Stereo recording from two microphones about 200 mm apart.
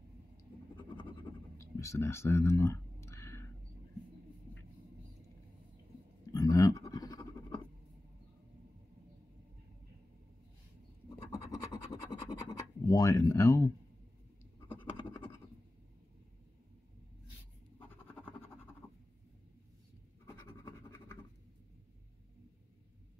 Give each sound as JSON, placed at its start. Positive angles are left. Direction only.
{"t": 1.6, "sound": "a sound", "side_deg": 15}
{"t": 6.3, "sound": "scratch", "side_deg": 15}
{"t": 11.5, "sound": "scratch", "side_deg": 20}
{"t": 15.0, "sound": "scratch", "side_deg": 25}
{"t": 17.7, "sound": "scratch", "side_deg": 10}
{"t": 18.8, "sound": "writing", "side_deg": 15}
{"t": 20.2, "sound": "scratch", "side_deg": 15}